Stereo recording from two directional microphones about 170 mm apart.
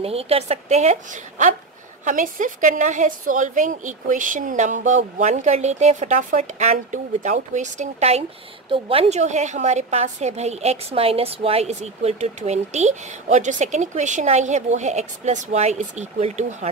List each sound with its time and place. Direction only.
0.0 s a woman's voice: 35° right (ahead or behind)